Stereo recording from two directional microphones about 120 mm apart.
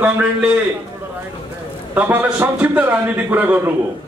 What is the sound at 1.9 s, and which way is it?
A man's voice, 15° right (ahead or behind).